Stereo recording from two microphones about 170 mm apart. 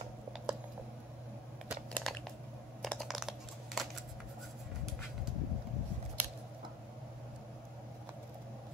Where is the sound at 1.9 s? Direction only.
5° left (ahead or behind).